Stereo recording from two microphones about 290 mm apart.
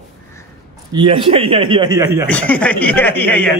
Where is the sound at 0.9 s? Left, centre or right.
Centre.